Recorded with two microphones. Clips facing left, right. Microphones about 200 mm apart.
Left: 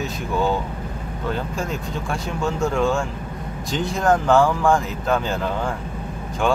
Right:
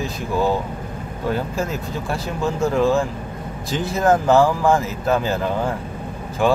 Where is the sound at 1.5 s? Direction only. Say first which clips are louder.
Right 2 dB; centre (ahead or behind).